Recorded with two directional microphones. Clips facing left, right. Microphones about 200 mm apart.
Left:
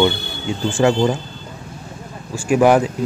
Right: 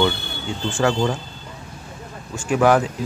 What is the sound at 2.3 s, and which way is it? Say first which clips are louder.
Speech: left 3 dB; 15° left (ahead or behind).